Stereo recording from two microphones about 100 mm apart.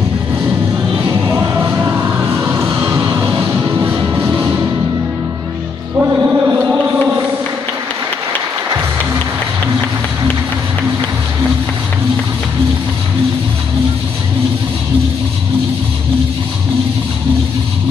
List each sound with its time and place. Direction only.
1.0 s music: 25° right (ahead or behind)
5.9 s chant: 20° right (ahead or behind)